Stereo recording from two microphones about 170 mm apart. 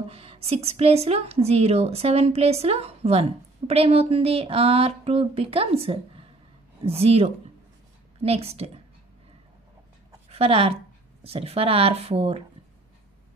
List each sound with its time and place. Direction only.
0.1 s a woman's voice: 35° right (ahead or behind)
10.3 s a woman's voice: 35° right (ahead or behind)